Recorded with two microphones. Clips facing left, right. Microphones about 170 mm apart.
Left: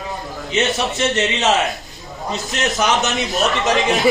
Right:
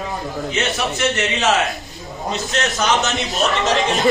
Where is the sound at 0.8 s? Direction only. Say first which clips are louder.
Left 1 dB; 20° left (ahead or behind).